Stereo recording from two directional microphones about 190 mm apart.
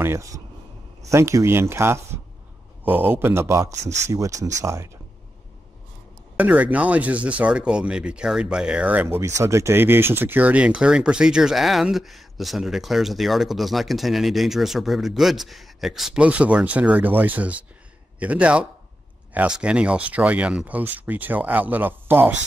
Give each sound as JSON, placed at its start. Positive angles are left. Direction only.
{"t": 0.0, "sound": "speech", "side_deg": -15}
{"t": 6.3, "sound": "speech", "side_deg": -10}